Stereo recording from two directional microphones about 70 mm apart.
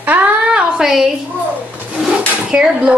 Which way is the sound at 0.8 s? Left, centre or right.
Centre.